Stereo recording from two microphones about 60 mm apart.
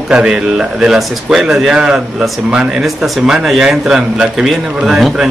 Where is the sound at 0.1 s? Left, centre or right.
Centre.